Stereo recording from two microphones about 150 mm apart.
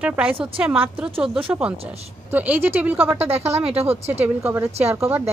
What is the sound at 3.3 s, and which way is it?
Speech, 45° right (ahead or behind).